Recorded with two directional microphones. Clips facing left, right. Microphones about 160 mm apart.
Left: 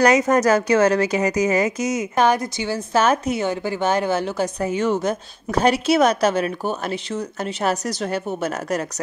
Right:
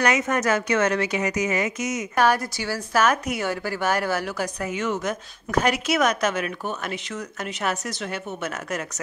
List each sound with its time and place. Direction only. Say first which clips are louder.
0.0 s a woman's voice: left 6 dB; 35° left (ahead or behind)
2.1 s a woman's voice: left 2 dB; 20° left (ahead or behind); by 9.0 s 35° left (ahead or behind)